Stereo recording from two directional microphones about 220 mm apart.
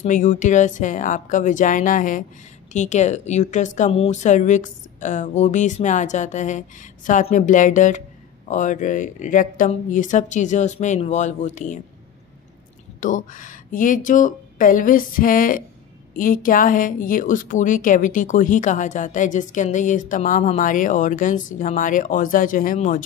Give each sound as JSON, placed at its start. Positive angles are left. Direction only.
{"t": 0.0, "sound": "a woman's voice", "side_deg": 35}
{"t": 13.0, "sound": "a woman's voice", "side_deg": 35}